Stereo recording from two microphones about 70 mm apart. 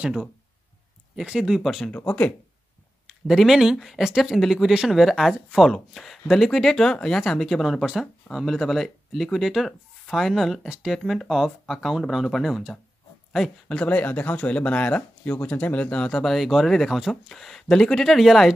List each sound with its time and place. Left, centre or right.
1.2 s speech: centre
1.5 s speech: centre
1.9 s speech: left
3.1 s speech: centre
13.7 s speech: centre